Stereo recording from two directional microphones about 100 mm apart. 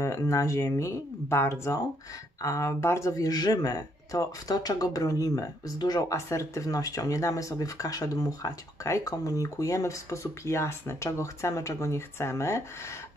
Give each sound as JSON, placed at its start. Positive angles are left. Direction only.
{"t": 0.0, "sound": "speech", "side_deg": 30}